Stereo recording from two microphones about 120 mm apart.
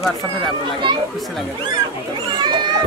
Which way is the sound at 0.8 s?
40° right (ahead or behind).